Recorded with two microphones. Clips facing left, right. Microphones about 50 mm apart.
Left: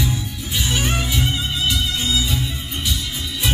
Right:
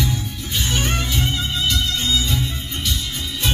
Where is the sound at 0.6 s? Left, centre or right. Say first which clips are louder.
Left 1 dB; centre.